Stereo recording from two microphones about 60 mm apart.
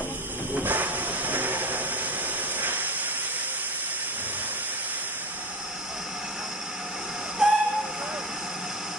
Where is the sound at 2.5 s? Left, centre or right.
Right.